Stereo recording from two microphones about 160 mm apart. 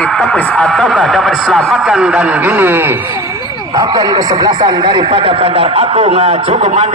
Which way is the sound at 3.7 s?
25° right (ahead or behind).